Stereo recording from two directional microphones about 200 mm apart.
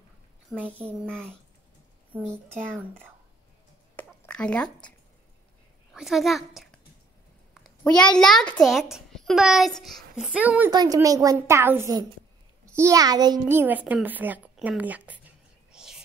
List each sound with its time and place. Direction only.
0.5 s speech: 10° right (ahead or behind)
3.9 s a sound: 5° left (ahead or behind)
5.9 s a child's voice: centre (ahead or behind)
7.6 s a sound: 5° left (ahead or behind)
8.2 s a child's voice: centre (ahead or behind)
10.7 s a child's voice: 20° right (ahead or behind); by 16.0 s 5° right (ahead or behind)